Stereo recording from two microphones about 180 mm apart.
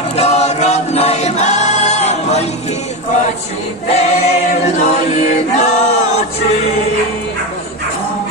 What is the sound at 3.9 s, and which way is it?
Choir, 35° left (ahead or behind).